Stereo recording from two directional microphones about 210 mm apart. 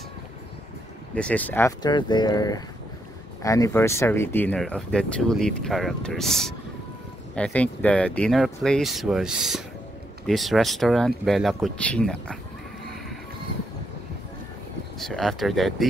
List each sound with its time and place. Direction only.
1.1 s speech: 5° left (ahead or behind)
1.8 s speech: 20° left (ahead or behind); by 12.4 s 5° left (ahead or behind)
15.0 s speech: centre (ahead or behind)